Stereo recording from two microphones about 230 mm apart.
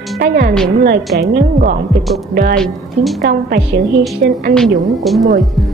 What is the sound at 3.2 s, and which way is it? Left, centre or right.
Speech, right.